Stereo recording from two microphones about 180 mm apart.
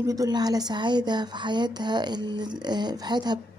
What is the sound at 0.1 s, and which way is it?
Speech, 20° right (ahead or behind).